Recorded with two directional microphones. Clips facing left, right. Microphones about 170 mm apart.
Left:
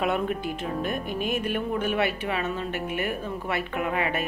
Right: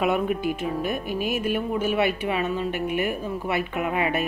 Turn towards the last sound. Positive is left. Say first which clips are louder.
# right 2 dB
turn(degrees=-15)  # may be behind; listen again after turning